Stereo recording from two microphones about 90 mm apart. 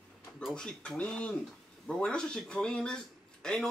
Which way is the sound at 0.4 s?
5° left (ahead or behind).